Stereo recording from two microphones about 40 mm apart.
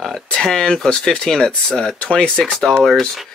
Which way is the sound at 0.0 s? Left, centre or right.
Centre.